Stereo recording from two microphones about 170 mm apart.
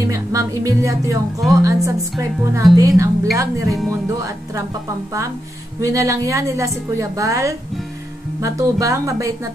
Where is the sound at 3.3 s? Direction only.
20° right (ahead or behind).